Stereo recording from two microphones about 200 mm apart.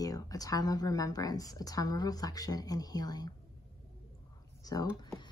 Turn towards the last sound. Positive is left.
turn(degrees=15)  # may be behind; listen again after turning